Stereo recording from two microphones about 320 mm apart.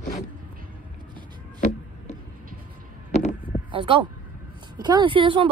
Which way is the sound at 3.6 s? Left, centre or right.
Centre.